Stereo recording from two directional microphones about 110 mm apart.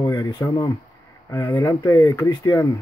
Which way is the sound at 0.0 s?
35° left (ahead or behind).